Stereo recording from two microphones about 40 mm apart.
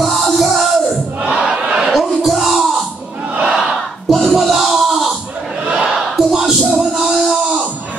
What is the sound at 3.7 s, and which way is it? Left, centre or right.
Battle cry, centre.